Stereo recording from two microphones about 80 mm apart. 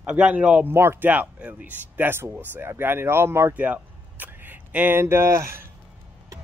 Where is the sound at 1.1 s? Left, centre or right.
Centre.